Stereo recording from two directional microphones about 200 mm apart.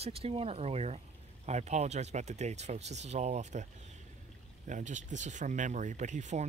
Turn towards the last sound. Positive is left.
turn(degrees=-35)  # may be behind; listen again after turning